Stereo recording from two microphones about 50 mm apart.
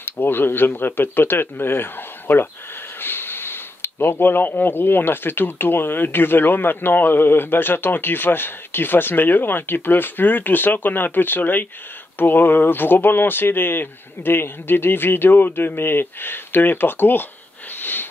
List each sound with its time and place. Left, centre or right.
0.0 s speech: left
17.7 s sniff: left